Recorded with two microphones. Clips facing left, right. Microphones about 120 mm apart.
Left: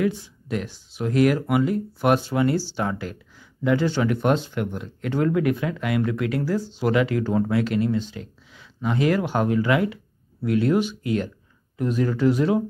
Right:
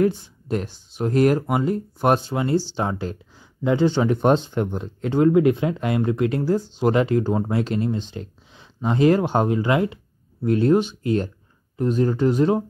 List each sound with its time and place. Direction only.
0.0 s speech: 40° right (ahead or behind)